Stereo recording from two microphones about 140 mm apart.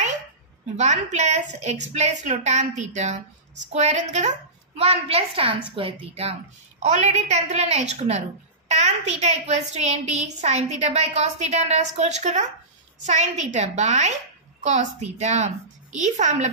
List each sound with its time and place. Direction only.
0.7 s a woman's voice: 55° right (ahead or behind)
4.7 s a woman's voice: 45° right (ahead or behind)